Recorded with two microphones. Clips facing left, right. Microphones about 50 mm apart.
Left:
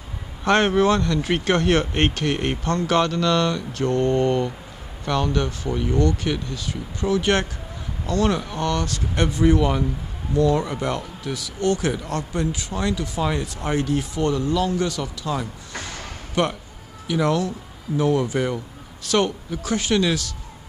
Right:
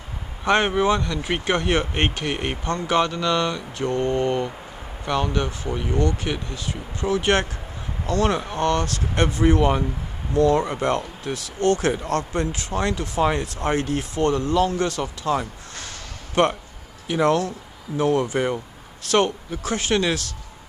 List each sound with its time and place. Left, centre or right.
0.5 s speech: centre
10.3 s speech: right
13.2 s speech: right
13.7 s speech: right
17.1 s speech: right